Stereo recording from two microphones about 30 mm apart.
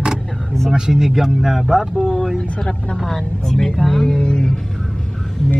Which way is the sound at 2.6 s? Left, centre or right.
Left.